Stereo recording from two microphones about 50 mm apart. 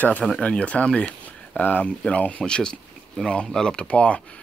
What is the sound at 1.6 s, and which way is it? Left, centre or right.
Speech, left.